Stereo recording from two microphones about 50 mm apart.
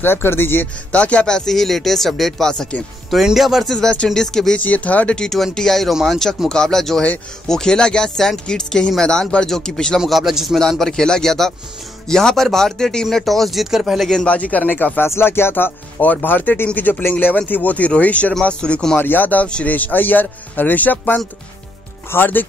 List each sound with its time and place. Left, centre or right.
0.0 s speech: left
0.9 s speech: left
3.3 s speech: centre
4.1 s speech: centre
4.6 s speech: left
5.5 s speech: centre
9.9 s speech: centre
10.7 s speech: centre
14.2 s a man's voice: left
15.0 s speech: left
16.0 s a man's voice: left; by 18.9 s centre
18.9 s speech: left
19.4 s a man's voice: left
19.7 s speech: left